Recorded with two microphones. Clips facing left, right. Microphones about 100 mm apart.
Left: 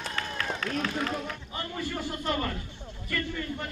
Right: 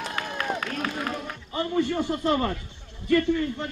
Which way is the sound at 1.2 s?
25° right (ahead or behind).